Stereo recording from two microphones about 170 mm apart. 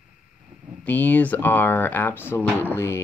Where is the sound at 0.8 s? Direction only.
10° left (ahead or behind).